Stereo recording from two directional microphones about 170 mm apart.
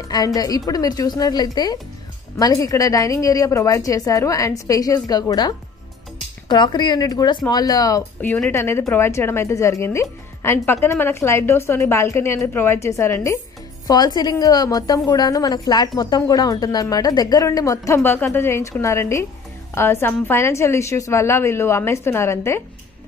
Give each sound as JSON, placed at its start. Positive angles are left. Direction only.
{"t": 0.1, "sound": "a woman's voice", "side_deg": 20}
{"t": 6.5, "sound": "a woman's voice", "side_deg": 25}